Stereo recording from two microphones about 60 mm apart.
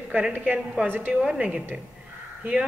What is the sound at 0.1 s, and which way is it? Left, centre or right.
A woman's voice, right.